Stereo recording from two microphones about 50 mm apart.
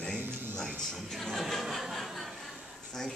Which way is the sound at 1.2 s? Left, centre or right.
Centre.